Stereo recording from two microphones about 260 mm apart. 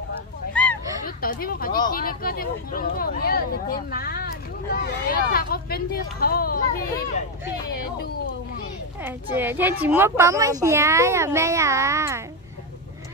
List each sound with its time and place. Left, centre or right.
1.0 s speech: left
9.0 s a woman's voice: centre